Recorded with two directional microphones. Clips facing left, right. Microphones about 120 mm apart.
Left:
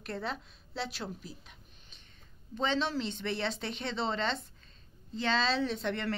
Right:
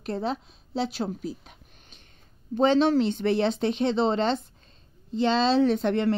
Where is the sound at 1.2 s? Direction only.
55° right (ahead or behind).